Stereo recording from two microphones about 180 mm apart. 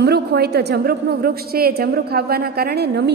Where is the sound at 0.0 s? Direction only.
65° right (ahead or behind).